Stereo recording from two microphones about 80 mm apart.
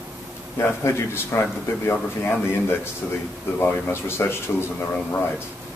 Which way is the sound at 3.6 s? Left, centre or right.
Left.